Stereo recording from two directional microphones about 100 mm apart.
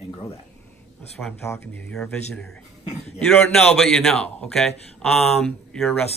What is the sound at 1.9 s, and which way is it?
A man's voice, 5° left (ahead or behind).